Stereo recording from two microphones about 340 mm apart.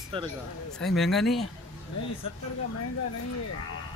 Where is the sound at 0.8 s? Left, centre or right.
Centre.